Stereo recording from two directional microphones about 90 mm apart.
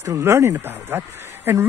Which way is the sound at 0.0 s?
30° right (ahead or behind).